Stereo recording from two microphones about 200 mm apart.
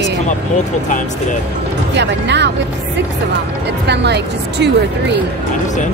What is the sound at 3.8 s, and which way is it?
A woman's voice, 55° right (ahead or behind).